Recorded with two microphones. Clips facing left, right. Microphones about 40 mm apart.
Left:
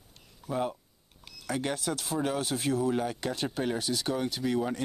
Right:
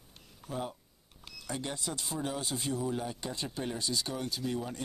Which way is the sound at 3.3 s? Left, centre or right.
Left.